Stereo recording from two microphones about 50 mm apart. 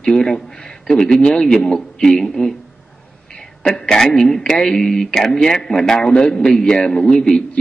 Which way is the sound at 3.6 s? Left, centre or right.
Centre.